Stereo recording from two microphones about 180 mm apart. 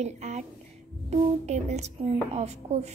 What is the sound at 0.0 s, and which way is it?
A woman's voice, 40° right (ahead or behind).